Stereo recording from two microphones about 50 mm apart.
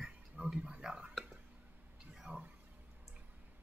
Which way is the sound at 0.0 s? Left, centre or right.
Centre.